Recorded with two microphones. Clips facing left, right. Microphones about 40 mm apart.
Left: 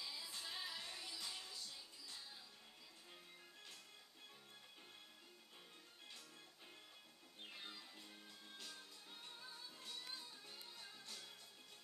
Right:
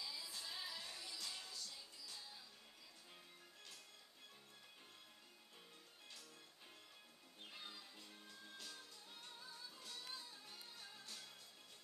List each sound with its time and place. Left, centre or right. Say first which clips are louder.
0.0 s music: even; centre
7.5 s music: even; centre